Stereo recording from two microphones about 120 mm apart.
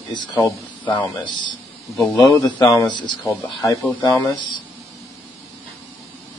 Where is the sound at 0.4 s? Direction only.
15° left (ahead or behind).